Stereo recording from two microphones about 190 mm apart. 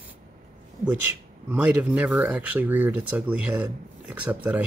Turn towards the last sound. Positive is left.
turn(degrees=-10)  # may be behind; listen again after turning